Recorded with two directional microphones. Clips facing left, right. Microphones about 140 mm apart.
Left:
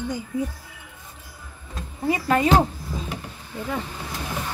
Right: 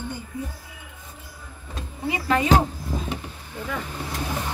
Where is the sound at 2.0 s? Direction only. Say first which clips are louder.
Left 3 dB; 40° left (ahead or behind).